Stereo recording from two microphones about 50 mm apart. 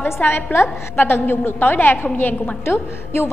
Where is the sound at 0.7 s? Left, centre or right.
Left.